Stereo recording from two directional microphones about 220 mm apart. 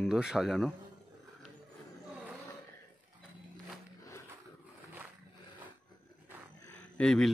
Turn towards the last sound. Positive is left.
turn(degrees=5)  # may be behind; listen again after turning